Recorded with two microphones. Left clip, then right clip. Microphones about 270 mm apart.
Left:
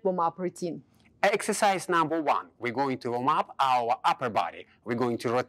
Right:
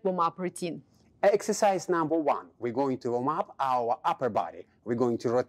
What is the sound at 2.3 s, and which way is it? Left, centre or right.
Speech, left.